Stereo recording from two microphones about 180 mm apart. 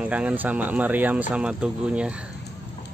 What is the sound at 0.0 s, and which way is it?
Speech, 5° right (ahead or behind).